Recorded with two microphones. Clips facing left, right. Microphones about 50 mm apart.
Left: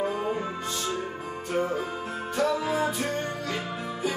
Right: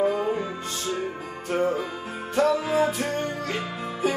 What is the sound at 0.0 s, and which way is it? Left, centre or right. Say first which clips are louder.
Music: right 4 dB; right.